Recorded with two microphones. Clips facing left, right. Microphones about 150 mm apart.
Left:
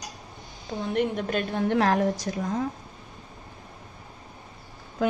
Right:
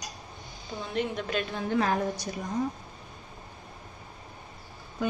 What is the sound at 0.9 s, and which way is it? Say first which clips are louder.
Speech: left 5 dB; 50° left (ahead or behind).